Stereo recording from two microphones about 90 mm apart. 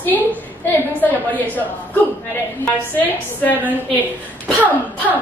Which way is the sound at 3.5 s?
20° right (ahead or behind).